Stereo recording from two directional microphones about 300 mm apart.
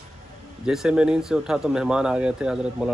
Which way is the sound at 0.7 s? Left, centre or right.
Centre.